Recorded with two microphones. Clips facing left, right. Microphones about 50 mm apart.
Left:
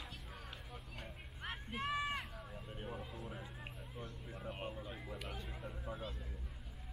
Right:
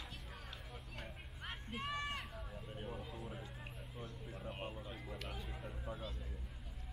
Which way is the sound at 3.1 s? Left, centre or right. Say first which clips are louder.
Even; centre.